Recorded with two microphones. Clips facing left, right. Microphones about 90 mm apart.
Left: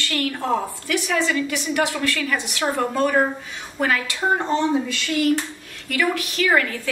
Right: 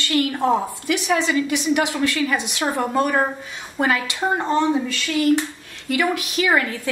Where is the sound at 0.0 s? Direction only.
20° right (ahead or behind).